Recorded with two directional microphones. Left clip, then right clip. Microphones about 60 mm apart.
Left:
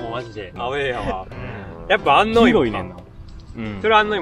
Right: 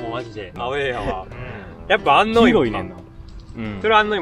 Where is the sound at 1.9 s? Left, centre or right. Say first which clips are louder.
Even; left.